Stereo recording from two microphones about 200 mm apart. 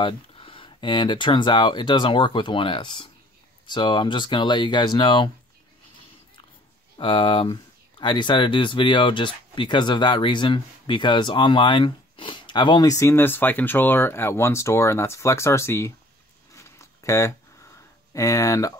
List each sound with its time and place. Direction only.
0.0 s speech: 25° left (ahead or behind)
7.0 s speech: 25° left (ahead or behind)
16.5 s a sound: 15° left (ahead or behind)
18.1 s speech: 15° left (ahead or behind)